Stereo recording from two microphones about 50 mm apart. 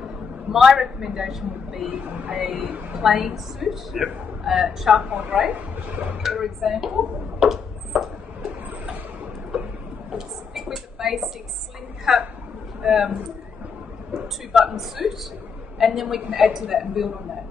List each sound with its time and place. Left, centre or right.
0.5 s a woman's voice: centre
1.9 s speech: right
3.0 s a woman's voice: centre
5.3 s speech: right
6.2 s speech: centre
7.3 s a sound: centre
10.1 s a sound: centre
12.0 s a woman's voice: centre
14.1 s a woman's voice: centre